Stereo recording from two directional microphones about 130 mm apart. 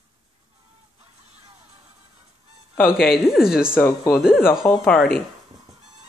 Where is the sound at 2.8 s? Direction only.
5° right (ahead or behind).